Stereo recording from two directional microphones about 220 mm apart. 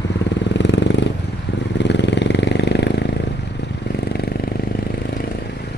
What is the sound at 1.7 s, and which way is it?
Vehicle, 50° left (ahead or behind).